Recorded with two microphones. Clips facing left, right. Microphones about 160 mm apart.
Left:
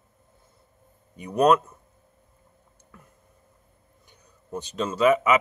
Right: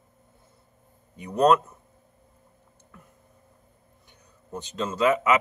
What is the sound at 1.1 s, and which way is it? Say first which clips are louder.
Speech: even; 15° left (ahead or behind).